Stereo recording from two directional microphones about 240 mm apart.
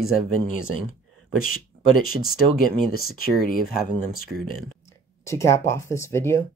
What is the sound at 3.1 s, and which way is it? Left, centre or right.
Speech, left.